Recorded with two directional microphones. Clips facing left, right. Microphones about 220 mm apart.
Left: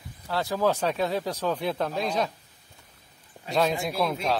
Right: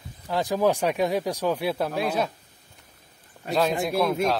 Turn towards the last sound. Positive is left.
turn(degrees=0)  # may be behind; listen again after turning